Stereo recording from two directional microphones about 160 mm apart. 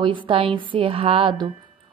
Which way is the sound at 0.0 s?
30° right (ahead or behind).